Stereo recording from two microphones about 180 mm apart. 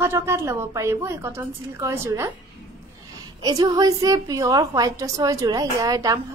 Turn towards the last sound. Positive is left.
turn(degrees=-20)  # may be behind; listen again after turning